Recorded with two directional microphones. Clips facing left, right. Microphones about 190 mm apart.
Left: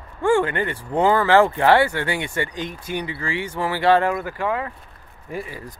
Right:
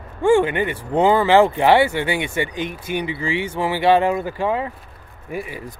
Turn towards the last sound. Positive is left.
turn(degrees=-15)  # may be behind; listen again after turning